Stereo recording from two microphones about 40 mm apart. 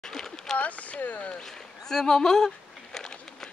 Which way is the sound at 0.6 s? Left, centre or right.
Left.